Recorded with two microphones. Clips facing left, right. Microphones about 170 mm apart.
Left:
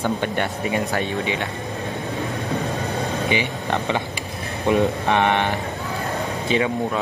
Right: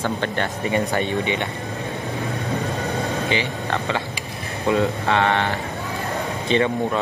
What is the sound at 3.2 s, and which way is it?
Speech, 15° left (ahead or behind).